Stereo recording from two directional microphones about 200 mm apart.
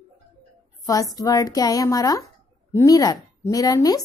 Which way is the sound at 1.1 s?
20° left (ahead or behind).